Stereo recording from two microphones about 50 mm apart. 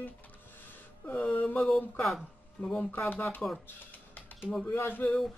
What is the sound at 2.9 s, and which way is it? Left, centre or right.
Speech, left.